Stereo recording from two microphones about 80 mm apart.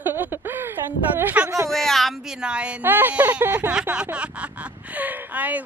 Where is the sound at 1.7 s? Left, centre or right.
Centre.